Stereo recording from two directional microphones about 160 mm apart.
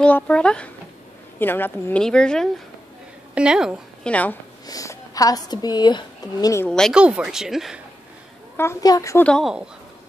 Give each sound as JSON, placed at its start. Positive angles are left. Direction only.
{"t": 0.0, "sound": "a woman's voice", "side_deg": 5}
{"t": 4.1, "sound": "speech", "side_deg": 10}
{"t": 4.6, "sound": "a woman's voice", "side_deg": 20}
{"t": 6.7, "sound": "a woman's voice", "side_deg": 0}
{"t": 8.5, "sound": "speech", "side_deg": 20}
{"t": 9.2, "sound": "a woman's voice", "side_deg": 0}